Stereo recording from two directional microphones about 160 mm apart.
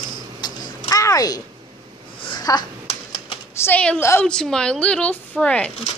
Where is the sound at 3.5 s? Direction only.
15° left (ahead or behind).